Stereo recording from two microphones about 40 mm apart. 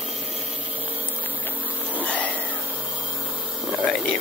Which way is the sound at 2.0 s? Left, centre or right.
Left.